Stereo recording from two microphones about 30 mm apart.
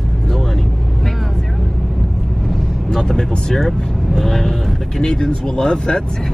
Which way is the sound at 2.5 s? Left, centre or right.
Centre.